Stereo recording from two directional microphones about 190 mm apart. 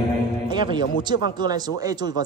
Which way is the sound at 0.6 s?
25° right (ahead or behind).